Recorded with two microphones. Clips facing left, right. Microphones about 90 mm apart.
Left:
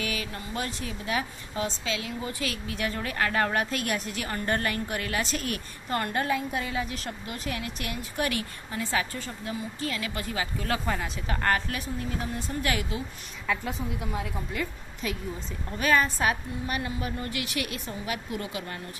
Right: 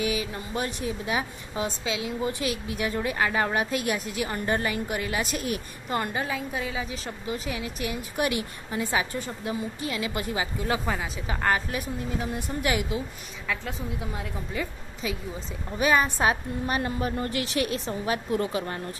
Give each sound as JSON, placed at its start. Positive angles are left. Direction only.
{"t": 0.0, "sound": "a woman's voice", "side_deg": -15}
{"t": 8.2, "sound": "a woman's voice", "side_deg": -20}
{"t": 13.5, "sound": "a woman's voice", "side_deg": 5}
{"t": 15.8, "sound": "a woman's voice", "side_deg": -15}
{"t": 16.6, "sound": "a woman's voice", "side_deg": -35}